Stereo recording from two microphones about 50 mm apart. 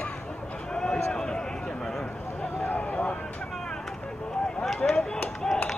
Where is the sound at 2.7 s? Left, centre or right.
Left.